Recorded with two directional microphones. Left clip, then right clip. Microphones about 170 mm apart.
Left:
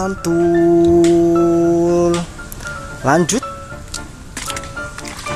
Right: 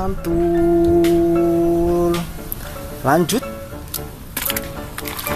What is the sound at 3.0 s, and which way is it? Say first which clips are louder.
Speech: left 2 dB; 15° left (ahead or behind).